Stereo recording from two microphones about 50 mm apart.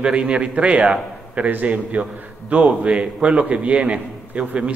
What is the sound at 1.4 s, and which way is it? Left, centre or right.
A man's voice, right.